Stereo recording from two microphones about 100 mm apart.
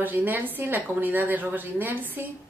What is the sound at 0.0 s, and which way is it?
A woman's voice, 20° right (ahead or behind).